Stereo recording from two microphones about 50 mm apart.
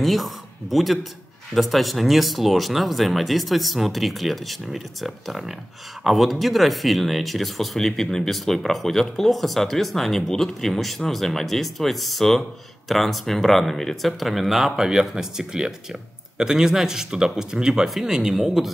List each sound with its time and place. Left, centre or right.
0.0 s speech: centre